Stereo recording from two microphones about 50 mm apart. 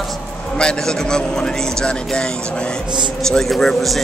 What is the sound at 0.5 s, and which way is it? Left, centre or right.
A man's voice, centre.